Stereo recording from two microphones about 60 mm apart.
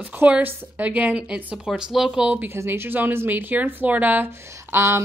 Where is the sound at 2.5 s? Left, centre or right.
Right.